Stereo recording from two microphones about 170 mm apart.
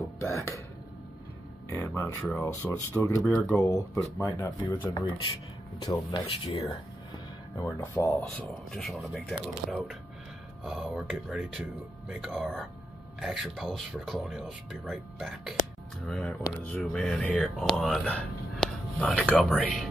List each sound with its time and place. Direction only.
0.2 s speech: 15° left (ahead or behind)
1.7 s speech: 15° left (ahead or behind)
3.2 s speech: centre (ahead or behind)
3.5 s speech: 20° left (ahead or behind)
7.5 s speech: 15° left (ahead or behind)
8.2 s speech: centre (ahead or behind)